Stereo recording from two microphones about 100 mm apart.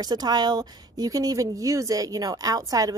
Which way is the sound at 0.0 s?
40° right (ahead or behind).